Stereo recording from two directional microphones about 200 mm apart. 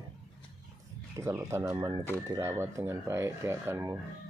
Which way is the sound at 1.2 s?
15° right (ahead or behind).